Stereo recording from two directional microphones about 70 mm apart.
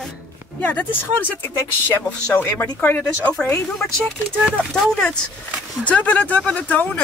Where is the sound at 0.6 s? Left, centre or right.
Left.